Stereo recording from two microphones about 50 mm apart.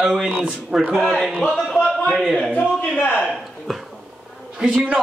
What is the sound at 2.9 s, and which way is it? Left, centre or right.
Speech, left.